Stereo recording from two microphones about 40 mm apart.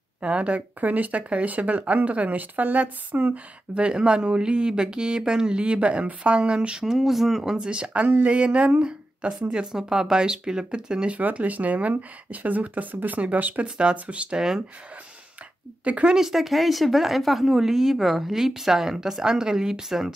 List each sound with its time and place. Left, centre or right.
0.2 s speech: right
0.7 s speech: right
7.0 s speech: centre
7.5 s speech: right
11.1 s speech: right
13.6 s speech: right
15.8 s speech: right
16.1 s speech: centre